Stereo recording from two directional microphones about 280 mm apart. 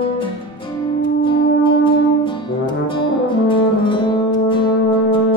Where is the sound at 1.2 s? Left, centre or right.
Centre.